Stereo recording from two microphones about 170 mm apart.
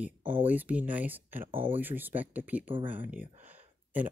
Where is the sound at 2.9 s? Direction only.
10° right (ahead or behind).